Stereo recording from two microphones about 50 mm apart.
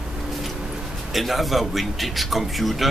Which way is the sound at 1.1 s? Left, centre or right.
Centre.